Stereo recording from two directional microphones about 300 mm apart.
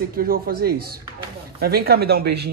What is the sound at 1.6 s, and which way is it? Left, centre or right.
Speech, right.